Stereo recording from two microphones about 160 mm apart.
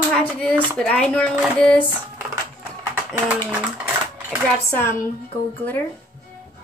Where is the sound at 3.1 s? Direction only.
10° right (ahead or behind).